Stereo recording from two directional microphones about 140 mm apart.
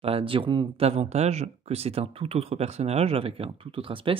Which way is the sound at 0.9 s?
50° right (ahead or behind).